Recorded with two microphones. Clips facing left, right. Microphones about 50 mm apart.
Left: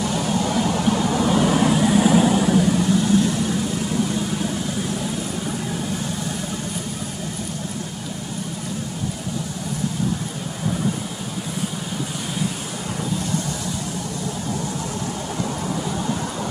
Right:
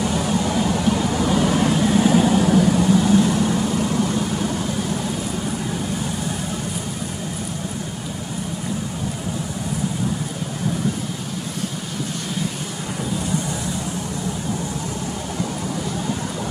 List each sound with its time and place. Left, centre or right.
0.0 s vehicle: centre
0.6 s vehicle: centre
2.9 s vehicle: centre